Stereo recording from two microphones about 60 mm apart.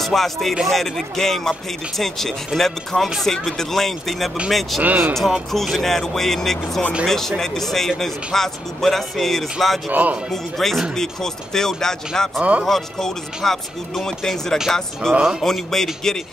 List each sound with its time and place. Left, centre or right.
0.0 s speech: centre
4.8 s speech: right
5.5 s speech: centre
9.8 s speech: right
10.3 s speech: centre
12.4 s speech: right
12.6 s speech: centre